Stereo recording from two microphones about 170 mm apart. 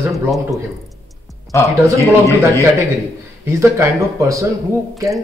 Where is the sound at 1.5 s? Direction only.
15° left (ahead or behind).